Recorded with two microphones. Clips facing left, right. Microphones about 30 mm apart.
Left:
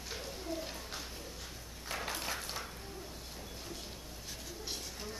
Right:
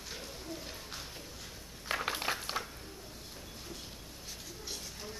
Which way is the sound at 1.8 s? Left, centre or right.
Right.